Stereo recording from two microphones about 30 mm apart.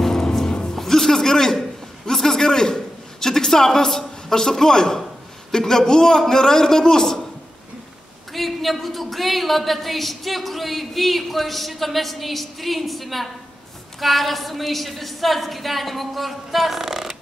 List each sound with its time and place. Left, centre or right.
0.0 s music: centre
0.7 s a sound: centre
5.6 s a man's voice: centre
8.3 s a woman's voice: centre